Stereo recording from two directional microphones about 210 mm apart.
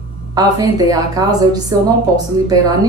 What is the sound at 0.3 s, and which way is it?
A woman's voice, 15° right (ahead or behind).